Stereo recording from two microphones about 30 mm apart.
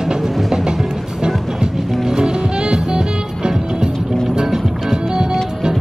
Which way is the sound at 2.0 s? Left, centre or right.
Right.